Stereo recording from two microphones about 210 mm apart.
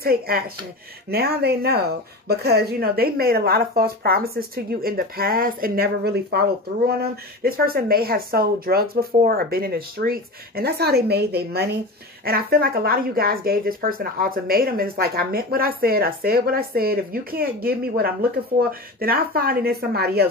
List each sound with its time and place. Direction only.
0.0 s speech: 45° right (ahead or behind)